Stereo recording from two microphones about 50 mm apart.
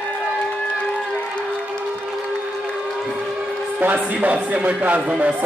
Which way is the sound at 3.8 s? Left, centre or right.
Right.